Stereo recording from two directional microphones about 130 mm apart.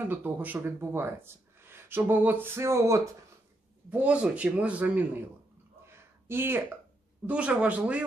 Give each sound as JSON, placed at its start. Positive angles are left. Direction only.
{"t": 0.0, "sound": "speech", "side_deg": -15}
{"t": 3.9, "sound": "speech", "side_deg": -10}
{"t": 5.9, "sound": "a sound", "side_deg": -20}
{"t": 7.2, "sound": "speech", "side_deg": -10}